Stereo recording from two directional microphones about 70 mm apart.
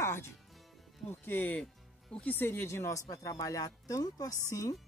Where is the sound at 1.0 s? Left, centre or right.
Left.